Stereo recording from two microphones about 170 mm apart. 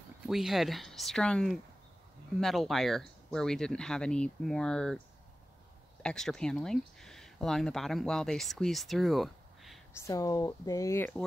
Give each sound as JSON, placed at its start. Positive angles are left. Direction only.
{"t": 0.3, "sound": "speech", "side_deg": 0}
{"t": 6.0, "sound": "speech", "side_deg": 5}
{"t": 9.9, "sound": "speech", "side_deg": 20}